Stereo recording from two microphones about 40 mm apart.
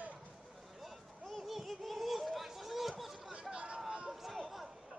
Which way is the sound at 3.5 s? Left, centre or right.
Right.